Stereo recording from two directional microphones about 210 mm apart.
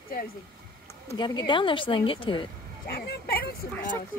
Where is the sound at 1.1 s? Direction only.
20° left (ahead or behind).